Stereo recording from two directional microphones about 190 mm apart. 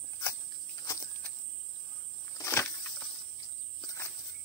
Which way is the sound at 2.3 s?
15° left (ahead or behind).